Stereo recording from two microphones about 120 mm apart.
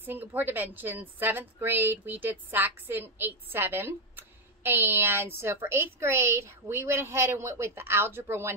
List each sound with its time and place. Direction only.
0.0 s a woman's voice: 15° right (ahead or behind)